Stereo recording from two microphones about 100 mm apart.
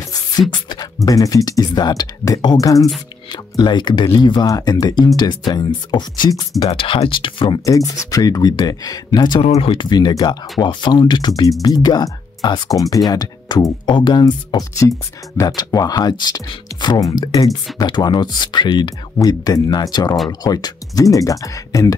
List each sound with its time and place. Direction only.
0.5 s speech: 45° left (ahead or behind)
1.0 s speech: 35° left (ahead or behind)
3.3 s speech: 45° left (ahead or behind)
6.7 s speech: 65° left (ahead or behind)
7.6 s speech: 35° left (ahead or behind)
9.4 s speech: 70° left (ahead or behind); by 21.9 s 35° left (ahead or behind)